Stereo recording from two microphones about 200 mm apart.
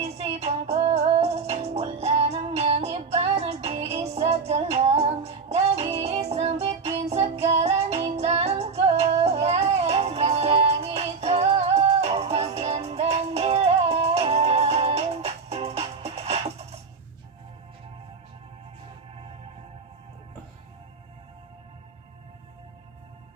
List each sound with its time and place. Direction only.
0.0 s music: 30° right (ahead or behind)